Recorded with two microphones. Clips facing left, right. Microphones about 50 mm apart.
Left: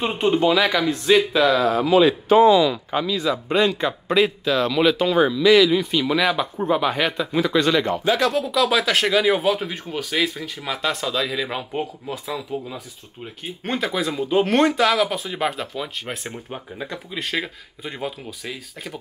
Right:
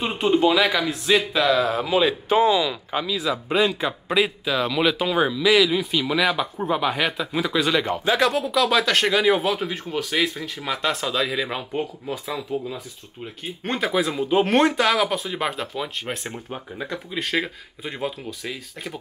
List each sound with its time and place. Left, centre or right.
0.0 s speech: centre
1.9 s speech: right
2.7 s speech: centre
8.0 s speech: right
8.4 s speech: centre